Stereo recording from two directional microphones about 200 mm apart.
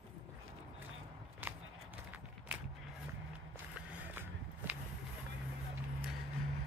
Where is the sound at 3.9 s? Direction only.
10° right (ahead or behind).